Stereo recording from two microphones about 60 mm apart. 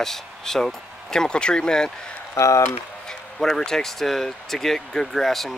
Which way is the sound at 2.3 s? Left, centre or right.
Left.